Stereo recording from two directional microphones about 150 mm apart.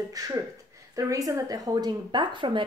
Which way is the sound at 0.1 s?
25° right (ahead or behind).